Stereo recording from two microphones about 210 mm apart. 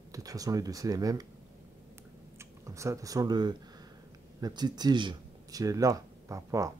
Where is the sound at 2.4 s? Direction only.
15° right (ahead or behind).